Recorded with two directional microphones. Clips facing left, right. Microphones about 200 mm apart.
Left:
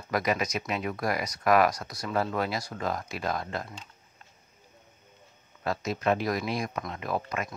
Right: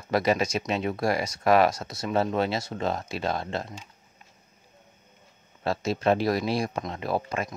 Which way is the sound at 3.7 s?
10° right (ahead or behind).